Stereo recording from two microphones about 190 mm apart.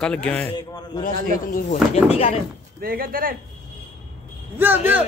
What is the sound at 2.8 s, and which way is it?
Speech, 50° right (ahead or behind).